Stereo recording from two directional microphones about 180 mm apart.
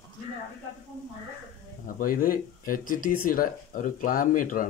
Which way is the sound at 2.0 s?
50° left (ahead or behind).